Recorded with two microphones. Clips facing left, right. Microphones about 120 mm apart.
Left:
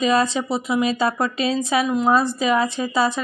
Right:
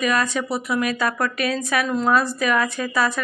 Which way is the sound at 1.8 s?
15° left (ahead or behind).